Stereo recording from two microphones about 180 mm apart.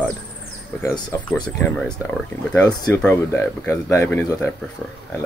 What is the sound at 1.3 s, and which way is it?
Speech, 5° left (ahead or behind).